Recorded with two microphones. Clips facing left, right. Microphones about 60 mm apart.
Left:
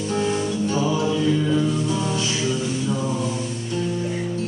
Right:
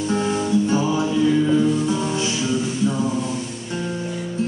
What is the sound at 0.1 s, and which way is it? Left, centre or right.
Music, right.